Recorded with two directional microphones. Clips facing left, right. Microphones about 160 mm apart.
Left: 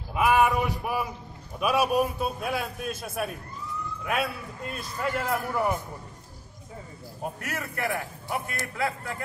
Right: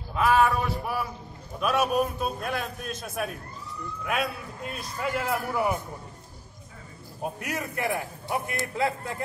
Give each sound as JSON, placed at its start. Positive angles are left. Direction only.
{"t": 0.1, "sound": "a sound", "side_deg": 15}
{"t": 1.6, "sound": "a man's voice", "side_deg": 10}
{"t": 7.3, "sound": "a man's voice", "side_deg": -15}